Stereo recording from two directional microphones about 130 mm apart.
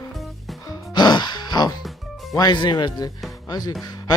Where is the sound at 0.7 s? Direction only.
30° left (ahead or behind).